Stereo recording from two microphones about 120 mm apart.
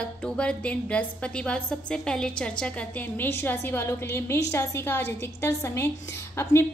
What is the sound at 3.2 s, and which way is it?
A woman's voice, 15° left (ahead or behind).